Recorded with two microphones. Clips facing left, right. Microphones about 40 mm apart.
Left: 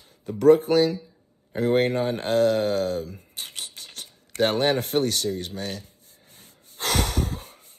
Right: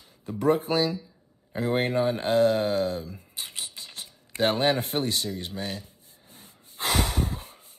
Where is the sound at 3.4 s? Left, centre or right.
Left.